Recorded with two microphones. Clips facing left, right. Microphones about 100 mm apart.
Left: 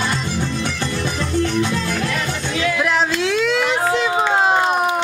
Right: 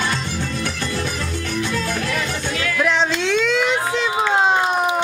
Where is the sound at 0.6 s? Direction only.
20° left (ahead or behind).